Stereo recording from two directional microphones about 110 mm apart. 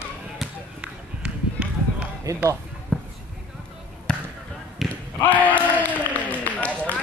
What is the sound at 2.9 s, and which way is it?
Basketball bounce, 10° left (ahead or behind).